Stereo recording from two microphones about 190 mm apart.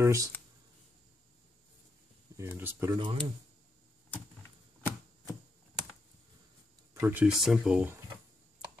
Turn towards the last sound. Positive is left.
turn(degrees=-5)  # may be behind; listen again after turning